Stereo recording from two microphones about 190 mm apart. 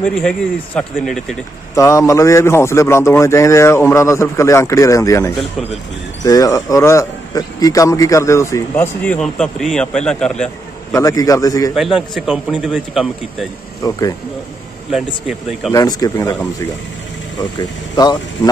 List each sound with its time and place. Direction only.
0.0 s a man's voice: 5° left (ahead or behind)
1.8 s a man's voice: 15° left (ahead or behind)
10.9 s speech: 15° left (ahead or behind)
11.7 s a man's voice: centre (ahead or behind)
13.8 s speech: 20° left (ahead or behind)
14.9 s a man's voice: 5° right (ahead or behind)
15.7 s a man's voice: 20° left (ahead or behind)